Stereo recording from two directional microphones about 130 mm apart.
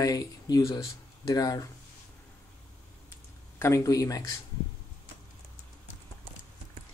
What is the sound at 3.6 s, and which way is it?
Speech, 20° left (ahead or behind).